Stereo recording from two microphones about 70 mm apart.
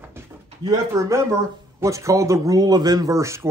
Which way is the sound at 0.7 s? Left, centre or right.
Right.